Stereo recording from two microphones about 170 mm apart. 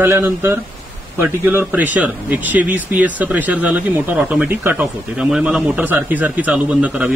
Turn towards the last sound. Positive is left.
turn(degrees=-10)  # may be behind; listen again after turning